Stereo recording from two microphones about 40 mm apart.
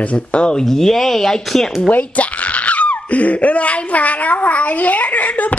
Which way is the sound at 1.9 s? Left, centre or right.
Left.